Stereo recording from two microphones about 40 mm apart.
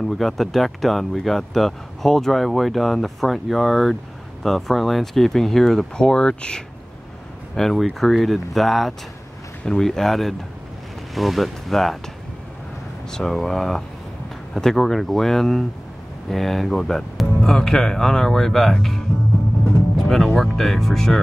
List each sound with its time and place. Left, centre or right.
0.1 s speech: centre
5.9 s speech: centre
13.1 s speech: centre
20.1 s speech: centre